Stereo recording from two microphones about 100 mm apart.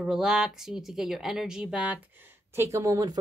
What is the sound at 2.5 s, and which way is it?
Speech, 30° right (ahead or behind).